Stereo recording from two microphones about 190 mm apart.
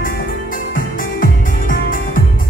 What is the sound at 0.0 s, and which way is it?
Music, 45° left (ahead or behind).